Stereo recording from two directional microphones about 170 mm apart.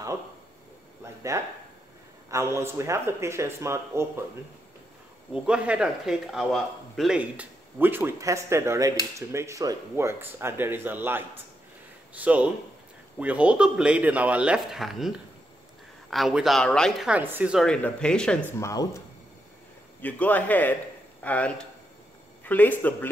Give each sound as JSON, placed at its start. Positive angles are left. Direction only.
{"t": 1.3, "sound": "speech", "side_deg": -20}
{"t": 5.3, "sound": "speech", "side_deg": -5}
{"t": 17.1, "sound": "speech", "side_deg": -10}
{"t": 17.6, "sound": "speech", "side_deg": 5}
{"t": 18.6, "sound": "a man's voice", "side_deg": 20}